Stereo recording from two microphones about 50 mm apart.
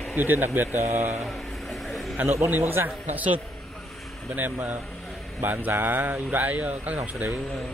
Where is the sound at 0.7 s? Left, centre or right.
Right.